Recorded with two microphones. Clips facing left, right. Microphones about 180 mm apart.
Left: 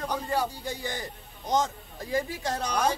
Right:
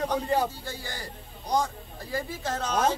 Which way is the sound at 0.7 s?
20° left (ahead or behind).